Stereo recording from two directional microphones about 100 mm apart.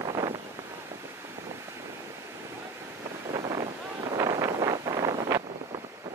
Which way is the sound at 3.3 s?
45° right (ahead or behind).